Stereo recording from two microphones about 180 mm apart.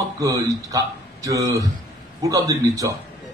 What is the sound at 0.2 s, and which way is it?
A man's voice, 20° right (ahead or behind).